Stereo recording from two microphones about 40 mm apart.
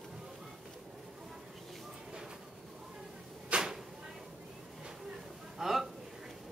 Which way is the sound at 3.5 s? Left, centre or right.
Right.